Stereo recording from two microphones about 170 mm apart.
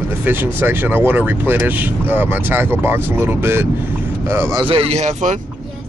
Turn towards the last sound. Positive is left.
turn(degrees=-45)  # may be behind; listen again after turning